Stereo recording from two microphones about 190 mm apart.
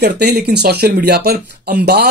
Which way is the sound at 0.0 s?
60° right (ahead or behind).